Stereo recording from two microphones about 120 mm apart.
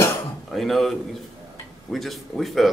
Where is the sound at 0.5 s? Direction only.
Centre (ahead or behind).